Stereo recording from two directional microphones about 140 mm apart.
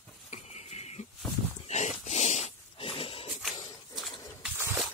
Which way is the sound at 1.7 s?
55° left (ahead or behind).